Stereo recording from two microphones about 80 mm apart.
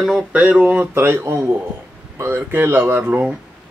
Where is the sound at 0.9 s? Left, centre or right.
Right.